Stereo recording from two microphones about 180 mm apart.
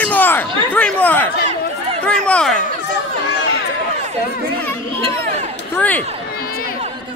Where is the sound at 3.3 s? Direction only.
75° left (ahead or behind).